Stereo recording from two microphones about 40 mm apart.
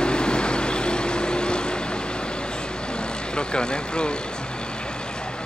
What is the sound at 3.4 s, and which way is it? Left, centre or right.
Speech, left.